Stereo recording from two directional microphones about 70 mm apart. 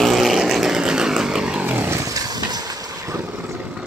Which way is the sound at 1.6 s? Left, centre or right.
Right.